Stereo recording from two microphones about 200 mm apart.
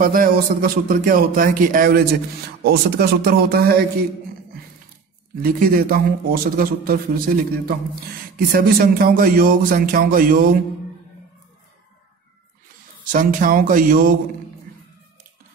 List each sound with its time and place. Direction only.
0.0 s a man's voice: 45° right (ahead or behind)
5.4 s a man's voice: 45° right (ahead or behind)
13.1 s a man's voice: 45° right (ahead or behind)